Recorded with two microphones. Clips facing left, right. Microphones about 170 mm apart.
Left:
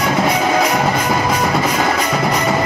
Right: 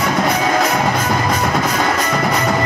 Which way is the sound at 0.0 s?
5° left (ahead or behind).